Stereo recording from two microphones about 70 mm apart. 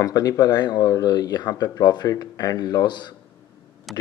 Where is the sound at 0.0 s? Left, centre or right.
Left.